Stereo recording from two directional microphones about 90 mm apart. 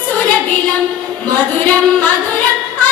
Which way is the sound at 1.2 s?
15° left (ahead or behind).